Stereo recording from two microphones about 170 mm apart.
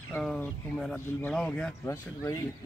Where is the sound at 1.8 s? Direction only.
20° left (ahead or behind).